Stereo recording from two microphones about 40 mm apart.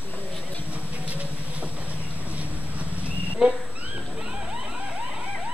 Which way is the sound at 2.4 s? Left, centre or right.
Right.